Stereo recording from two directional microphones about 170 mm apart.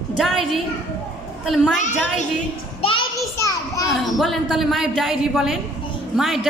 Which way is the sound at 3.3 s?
20° left (ahead or behind).